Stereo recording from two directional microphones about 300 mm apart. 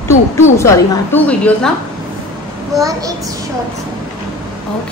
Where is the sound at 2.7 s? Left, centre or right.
Centre.